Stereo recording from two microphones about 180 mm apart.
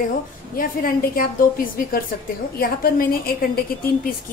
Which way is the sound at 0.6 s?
50° left (ahead or behind).